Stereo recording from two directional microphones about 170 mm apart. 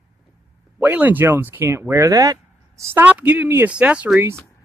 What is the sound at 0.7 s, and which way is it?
Speech, 10° right (ahead or behind).